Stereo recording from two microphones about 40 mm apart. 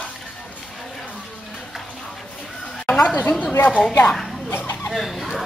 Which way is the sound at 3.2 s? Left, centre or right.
Left.